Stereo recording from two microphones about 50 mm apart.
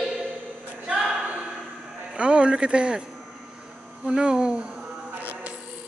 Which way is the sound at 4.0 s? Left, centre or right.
Centre.